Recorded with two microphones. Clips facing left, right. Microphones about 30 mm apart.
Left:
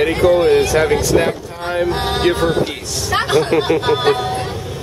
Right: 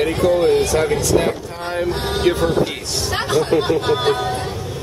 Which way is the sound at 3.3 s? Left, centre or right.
Left.